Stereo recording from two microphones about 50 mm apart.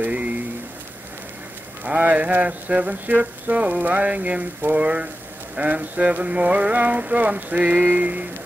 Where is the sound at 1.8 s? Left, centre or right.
Right.